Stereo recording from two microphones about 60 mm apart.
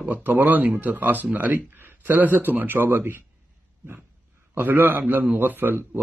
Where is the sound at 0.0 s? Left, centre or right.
Right.